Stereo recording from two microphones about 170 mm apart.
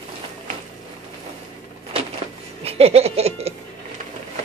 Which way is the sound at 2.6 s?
35° right (ahead or behind).